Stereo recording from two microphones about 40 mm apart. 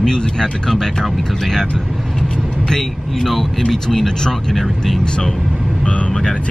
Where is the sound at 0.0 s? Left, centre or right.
Centre.